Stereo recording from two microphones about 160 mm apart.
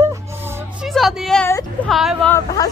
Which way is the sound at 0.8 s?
Centre (ahead or behind).